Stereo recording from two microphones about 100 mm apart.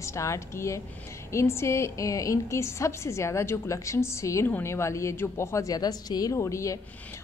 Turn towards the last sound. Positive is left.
turn(degrees=30)  # may be behind; listen again after turning